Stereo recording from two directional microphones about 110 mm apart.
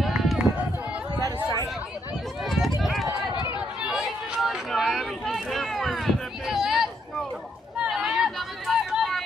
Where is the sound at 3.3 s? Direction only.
45° left (ahead or behind).